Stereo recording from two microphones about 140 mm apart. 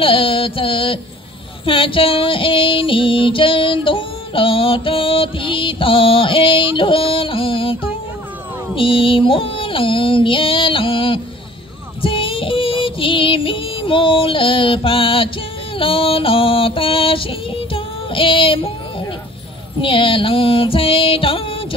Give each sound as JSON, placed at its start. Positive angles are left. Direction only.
{"t": 0.0, "sound": "music", "side_deg": 40}
{"t": 15.8, "sound": "female singing", "side_deg": 40}
{"t": 19.8, "sound": "music", "side_deg": 40}